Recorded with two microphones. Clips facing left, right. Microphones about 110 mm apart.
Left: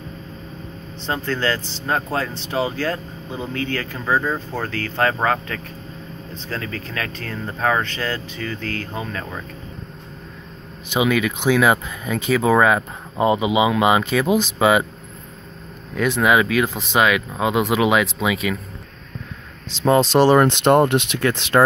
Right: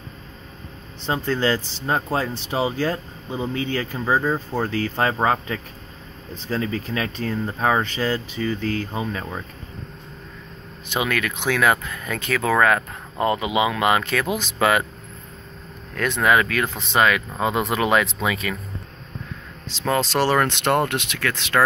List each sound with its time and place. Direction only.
1.0 s speech: 15° right (ahead or behind)
10.9 s speech: 15° left (ahead or behind)
15.9 s speech: 10° left (ahead or behind)
19.8 s speech: 20° left (ahead or behind)